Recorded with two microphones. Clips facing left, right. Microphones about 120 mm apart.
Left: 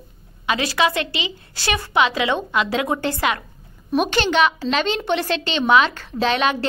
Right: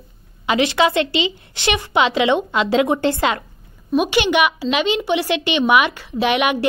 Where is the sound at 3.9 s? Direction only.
5° right (ahead or behind).